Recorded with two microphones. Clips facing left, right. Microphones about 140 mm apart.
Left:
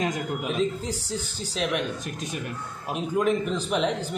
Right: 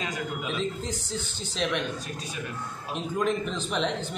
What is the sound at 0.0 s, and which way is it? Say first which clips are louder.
Speech: left 4 dB; 50° left (ahead or behind).